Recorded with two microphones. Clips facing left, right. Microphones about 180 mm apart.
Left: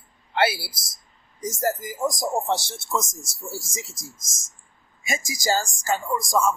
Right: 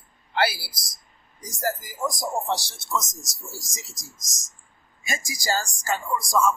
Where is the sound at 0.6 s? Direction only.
25° left (ahead or behind).